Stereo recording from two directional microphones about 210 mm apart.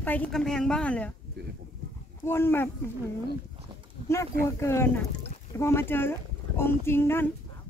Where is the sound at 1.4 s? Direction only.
50° right (ahead or behind).